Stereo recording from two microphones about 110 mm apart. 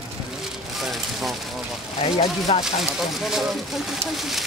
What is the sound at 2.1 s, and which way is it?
Speech, 85° left.